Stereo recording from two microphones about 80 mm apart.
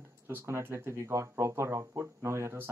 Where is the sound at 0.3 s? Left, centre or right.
Right.